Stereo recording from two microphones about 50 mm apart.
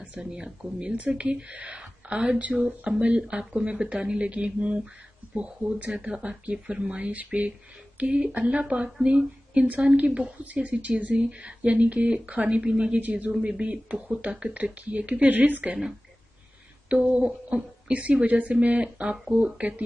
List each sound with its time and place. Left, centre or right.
0.2 s a woman's voice: centre
3.0 s a woman's voice: centre
13.0 s a woman's voice: right
16.9 s a woman's voice: right